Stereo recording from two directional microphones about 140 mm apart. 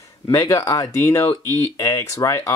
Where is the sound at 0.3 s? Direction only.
25° left (ahead or behind).